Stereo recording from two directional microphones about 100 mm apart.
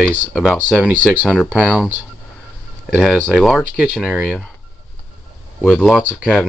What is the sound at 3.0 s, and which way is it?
Speech, 10° right (ahead or behind).